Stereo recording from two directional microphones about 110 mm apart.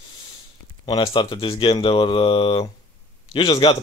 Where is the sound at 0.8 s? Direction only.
50° left (ahead or behind).